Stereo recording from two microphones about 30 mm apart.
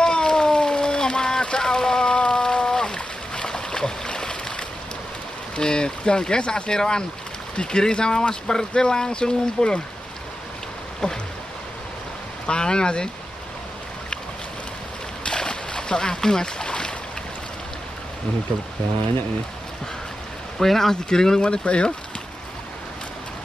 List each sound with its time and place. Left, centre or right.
0.0 s a sound: left
5.6 s speech: left
12.4 s speech: left
15.2 s a sound: left
20.5 s speech: centre
20.9 s speech: left
21.4 s speech: left